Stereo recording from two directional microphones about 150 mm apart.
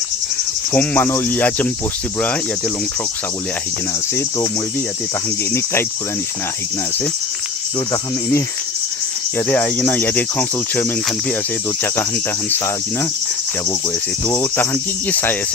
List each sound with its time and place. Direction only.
0.7 s speech: 10° left (ahead or behind)
7.9 s speech: 20° left (ahead or behind)
9.5 s speech: 10° left (ahead or behind)
11.8 s speech: 15° left (ahead or behind)
14.2 s speech: 15° left (ahead or behind)